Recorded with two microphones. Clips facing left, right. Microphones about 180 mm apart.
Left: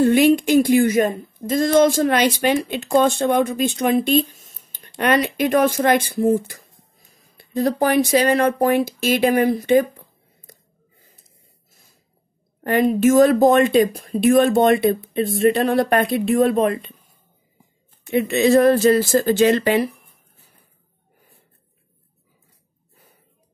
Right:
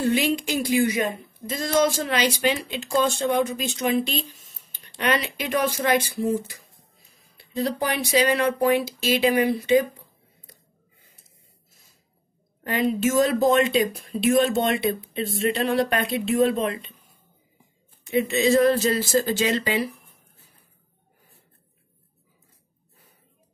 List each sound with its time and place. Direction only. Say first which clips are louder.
0.0 s speech: left 8 dB; 55° left (ahead or behind)
12.6 s speech: left 7 dB; 50° left (ahead or behind)
18.0 s speech: left 4 dB; 60° left (ahead or behind)